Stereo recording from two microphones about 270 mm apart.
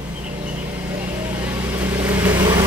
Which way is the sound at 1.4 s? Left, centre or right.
Centre.